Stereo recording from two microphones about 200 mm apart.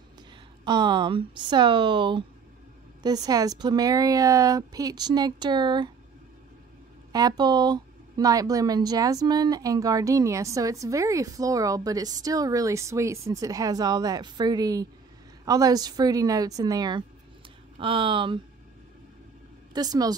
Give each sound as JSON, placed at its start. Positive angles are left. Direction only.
{"t": 0.7, "sound": "a woman's voice", "side_deg": -20}
{"t": 7.1, "sound": "a woman's voice", "side_deg": -20}
{"t": 19.7, "sound": "a woman's voice", "side_deg": -20}